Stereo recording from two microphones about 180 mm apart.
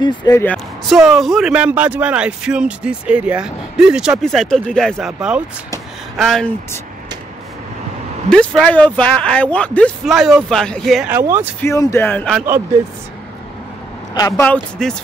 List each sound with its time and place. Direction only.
0.0 s speech: 25° left (ahead or behind)
0.8 s speech: centre (ahead or behind)
8.3 s speech: 5° left (ahead or behind)
11.1 s speech: 15° right (ahead or behind)
11.6 s speech: 15° left (ahead or behind)
14.1 s speech: 20° left (ahead or behind)
14.5 s speech: 5° left (ahead or behind)